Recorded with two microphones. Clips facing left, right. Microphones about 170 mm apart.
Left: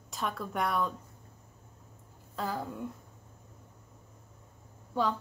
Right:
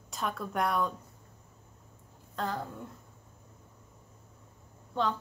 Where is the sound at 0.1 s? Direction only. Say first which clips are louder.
Right 1 dB; centre (ahead or behind).